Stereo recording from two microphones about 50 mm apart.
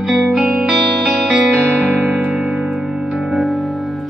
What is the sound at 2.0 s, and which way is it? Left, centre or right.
Music, centre.